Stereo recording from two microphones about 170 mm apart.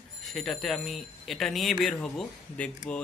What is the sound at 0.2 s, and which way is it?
Speech, centre (ahead or behind).